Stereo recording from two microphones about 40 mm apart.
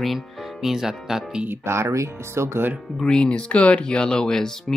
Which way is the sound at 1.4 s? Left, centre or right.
Right.